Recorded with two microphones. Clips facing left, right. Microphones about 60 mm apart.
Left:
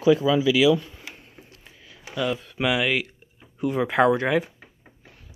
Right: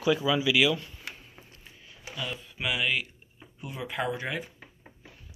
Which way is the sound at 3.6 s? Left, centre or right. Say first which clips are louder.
Left 13 dB; left.